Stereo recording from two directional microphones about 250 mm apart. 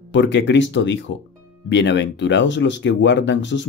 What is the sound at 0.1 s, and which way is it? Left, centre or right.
Speech, left.